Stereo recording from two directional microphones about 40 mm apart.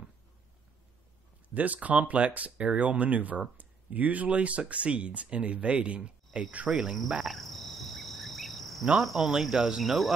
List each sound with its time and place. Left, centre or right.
1.5 s speech: right
6.7 s cricket: centre
7.2 s insect: centre
9.0 s cricket: centre
9.8 s cricket: centre